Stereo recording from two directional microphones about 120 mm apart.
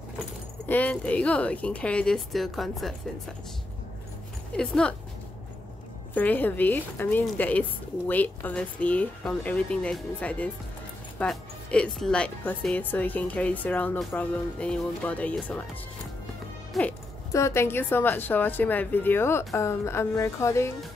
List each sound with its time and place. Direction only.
0.7 s speech: 15° left (ahead or behind)
4.5 s speech: 5° left (ahead or behind)
6.1 s speech: 15° left (ahead or behind)
16.8 s speech: centre (ahead or behind)
17.3 s a woman's voice: 25° left (ahead or behind)